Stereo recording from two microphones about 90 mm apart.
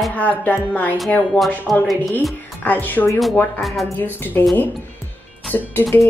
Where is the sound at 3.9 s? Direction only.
20° left (ahead or behind).